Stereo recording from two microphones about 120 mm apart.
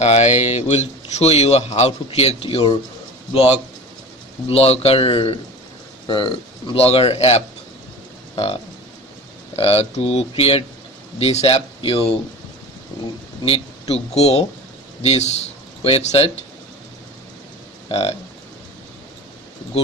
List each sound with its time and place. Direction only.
0.0 s speech: 65° left (ahead or behind)
9.6 s speech: 55° left (ahead or behind)
13.5 s speech: 60° left (ahead or behind)
17.8 s speech: 55° left (ahead or behind)